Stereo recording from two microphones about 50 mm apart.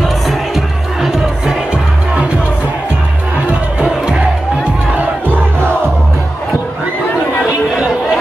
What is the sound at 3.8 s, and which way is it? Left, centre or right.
Music, centre.